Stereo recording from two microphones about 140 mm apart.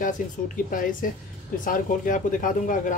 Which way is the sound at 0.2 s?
70° left (ahead or behind).